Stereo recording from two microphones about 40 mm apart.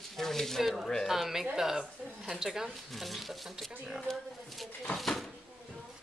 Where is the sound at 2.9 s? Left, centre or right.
Centre.